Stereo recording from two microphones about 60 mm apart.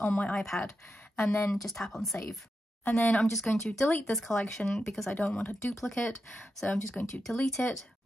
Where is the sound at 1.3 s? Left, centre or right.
Left.